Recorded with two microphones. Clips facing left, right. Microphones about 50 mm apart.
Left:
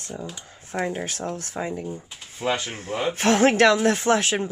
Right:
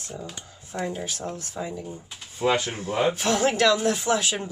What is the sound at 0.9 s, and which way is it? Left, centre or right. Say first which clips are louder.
Speech: left 3 dB; left.